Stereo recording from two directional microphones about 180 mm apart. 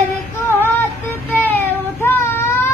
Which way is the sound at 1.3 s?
10° left (ahead or behind).